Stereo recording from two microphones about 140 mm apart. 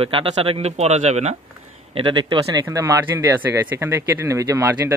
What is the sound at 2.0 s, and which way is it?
Speech, 35° right (ahead or behind).